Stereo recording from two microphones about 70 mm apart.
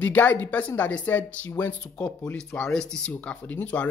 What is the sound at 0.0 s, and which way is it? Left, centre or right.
Speech, left.